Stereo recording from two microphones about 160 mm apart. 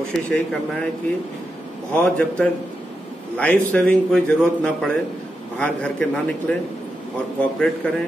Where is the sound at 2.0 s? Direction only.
10° left (ahead or behind).